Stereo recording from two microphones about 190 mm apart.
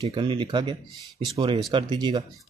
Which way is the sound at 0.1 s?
25° right (ahead or behind).